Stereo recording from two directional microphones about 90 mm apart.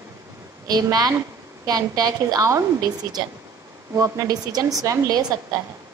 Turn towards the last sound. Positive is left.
turn(degrees=-45)  # may be behind; listen again after turning